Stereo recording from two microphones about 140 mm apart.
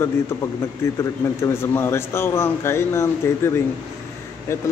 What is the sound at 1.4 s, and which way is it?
Speech, 20° left (ahead or behind).